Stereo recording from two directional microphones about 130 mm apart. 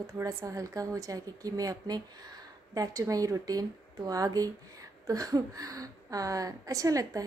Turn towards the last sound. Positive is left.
turn(degrees=-25)  # may be behind; listen again after turning